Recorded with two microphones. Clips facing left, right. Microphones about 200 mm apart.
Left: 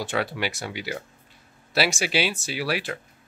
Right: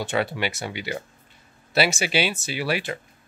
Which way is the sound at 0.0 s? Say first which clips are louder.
Right 2 dB; centre (ahead or behind).